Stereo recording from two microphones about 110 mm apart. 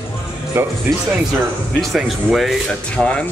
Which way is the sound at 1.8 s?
Centre (ahead or behind).